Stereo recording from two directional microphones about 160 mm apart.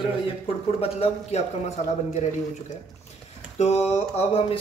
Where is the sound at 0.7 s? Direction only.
40° left (ahead or behind).